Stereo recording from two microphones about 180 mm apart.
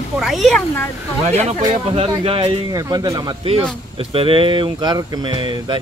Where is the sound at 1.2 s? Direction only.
40° right (ahead or behind).